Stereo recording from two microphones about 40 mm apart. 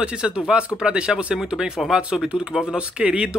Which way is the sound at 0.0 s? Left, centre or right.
Right.